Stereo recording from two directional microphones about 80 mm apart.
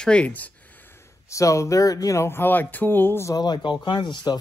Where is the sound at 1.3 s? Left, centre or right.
Left.